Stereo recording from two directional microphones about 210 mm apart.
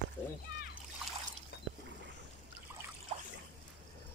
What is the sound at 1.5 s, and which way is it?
Rowboat, 55° left (ahead or behind).